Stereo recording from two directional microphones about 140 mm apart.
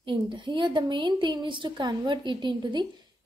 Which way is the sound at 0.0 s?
35° right (ahead or behind).